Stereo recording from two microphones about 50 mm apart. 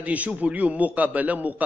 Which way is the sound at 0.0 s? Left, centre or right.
Right.